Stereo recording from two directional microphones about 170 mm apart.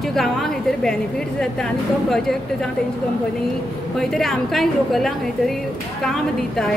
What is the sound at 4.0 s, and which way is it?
A woman's voice, centre (ahead or behind).